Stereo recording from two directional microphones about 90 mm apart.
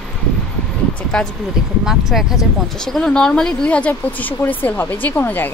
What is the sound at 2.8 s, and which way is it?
Speech, 5° left (ahead or behind).